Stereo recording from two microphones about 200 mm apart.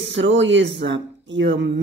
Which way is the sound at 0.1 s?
65° right (ahead or behind).